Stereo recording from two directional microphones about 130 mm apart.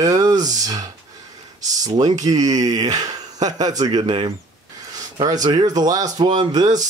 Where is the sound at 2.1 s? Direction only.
30° right (ahead or behind).